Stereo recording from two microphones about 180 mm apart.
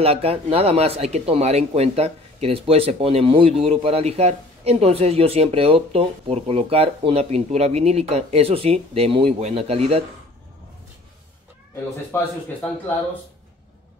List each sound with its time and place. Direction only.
0.0 s speech: 35° right (ahead or behind)